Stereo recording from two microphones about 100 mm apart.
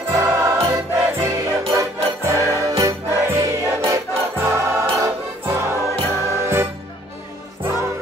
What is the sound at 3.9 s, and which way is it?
Music, 30° right (ahead or behind).